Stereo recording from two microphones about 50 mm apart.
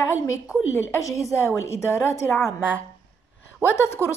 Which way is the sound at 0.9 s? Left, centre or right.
Left.